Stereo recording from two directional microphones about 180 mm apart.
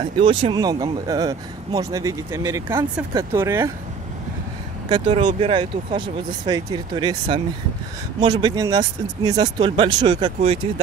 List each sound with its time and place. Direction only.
0.0 s speech: 30° right (ahead or behind); by 3.7 s 15° right (ahead or behind)
4.8 s speech: 25° right (ahead or behind)